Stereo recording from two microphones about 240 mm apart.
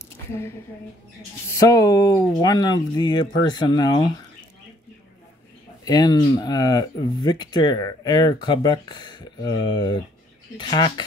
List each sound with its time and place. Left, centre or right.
1.5 s speech: centre
5.9 s speech: centre